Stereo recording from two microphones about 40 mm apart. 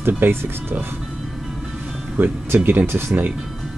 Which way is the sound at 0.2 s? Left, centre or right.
Right.